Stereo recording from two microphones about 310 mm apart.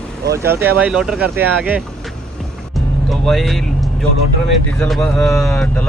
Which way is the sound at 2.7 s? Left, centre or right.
Centre.